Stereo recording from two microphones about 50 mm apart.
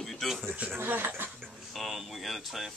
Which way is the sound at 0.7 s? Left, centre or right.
Right.